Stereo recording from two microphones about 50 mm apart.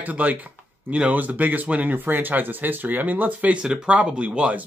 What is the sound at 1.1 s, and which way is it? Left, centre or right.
Speech, right.